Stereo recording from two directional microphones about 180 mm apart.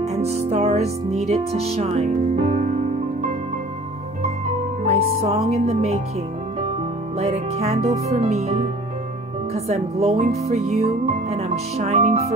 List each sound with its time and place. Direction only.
0.0 s music: 35° right (ahead or behind)
4.8 s speech: 35° right (ahead or behind)
7.2 s speech: 35° right (ahead or behind)